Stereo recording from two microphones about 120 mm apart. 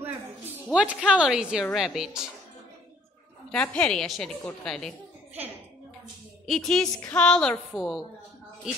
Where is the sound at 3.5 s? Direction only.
10° left (ahead or behind).